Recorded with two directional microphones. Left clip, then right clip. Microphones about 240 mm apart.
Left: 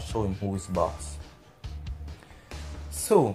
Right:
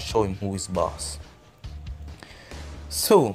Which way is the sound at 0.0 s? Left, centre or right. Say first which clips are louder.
Right 7 dB; right.